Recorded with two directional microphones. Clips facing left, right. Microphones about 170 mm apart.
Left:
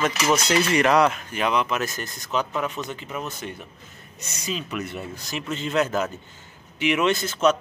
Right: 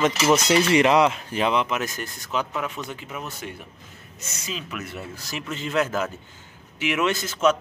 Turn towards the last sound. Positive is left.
turn(degrees=-5)  # may be behind; listen again after turning